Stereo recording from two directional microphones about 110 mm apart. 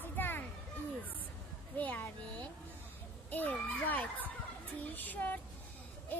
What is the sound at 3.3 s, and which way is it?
Fowl, 15° left (ahead or behind).